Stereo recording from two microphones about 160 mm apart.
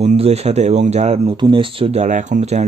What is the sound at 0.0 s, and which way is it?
Speech, 40° right (ahead or behind).